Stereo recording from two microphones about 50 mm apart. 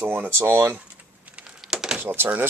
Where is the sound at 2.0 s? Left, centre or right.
Right.